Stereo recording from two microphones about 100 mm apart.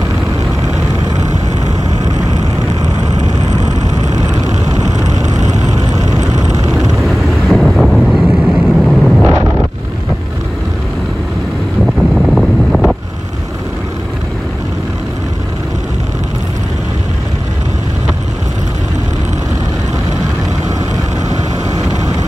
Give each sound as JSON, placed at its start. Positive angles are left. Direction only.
{"t": 6.0, "sound": "vehicle", "side_deg": -40}
{"t": 6.7, "sound": "vehicle", "side_deg": 0}
{"t": 11.8, "sound": "wind noise", "side_deg": 0}